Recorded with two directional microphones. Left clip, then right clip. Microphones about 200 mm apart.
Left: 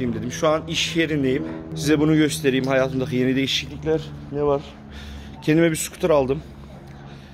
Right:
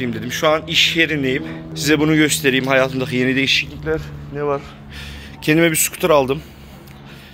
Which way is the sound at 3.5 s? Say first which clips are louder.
Right 3 dB; 20° left (ahead or behind).